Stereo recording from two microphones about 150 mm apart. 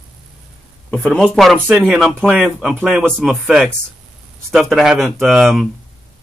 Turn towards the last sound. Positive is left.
turn(degrees=0)  # may be behind; listen again after turning